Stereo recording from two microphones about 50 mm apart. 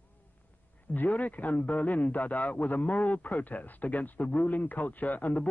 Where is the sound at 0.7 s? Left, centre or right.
Left.